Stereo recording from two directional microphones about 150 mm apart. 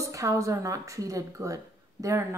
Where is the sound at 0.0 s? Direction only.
20° right (ahead or behind).